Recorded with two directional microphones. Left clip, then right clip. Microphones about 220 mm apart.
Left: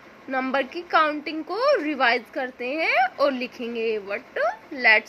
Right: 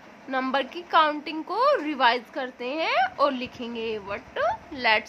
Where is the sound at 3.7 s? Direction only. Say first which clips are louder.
Left 6 dB; 30° right (ahead or behind).